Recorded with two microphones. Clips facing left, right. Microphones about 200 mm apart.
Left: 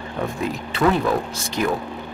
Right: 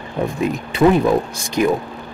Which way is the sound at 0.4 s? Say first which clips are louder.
Right 6 dB; 15° right (ahead or behind).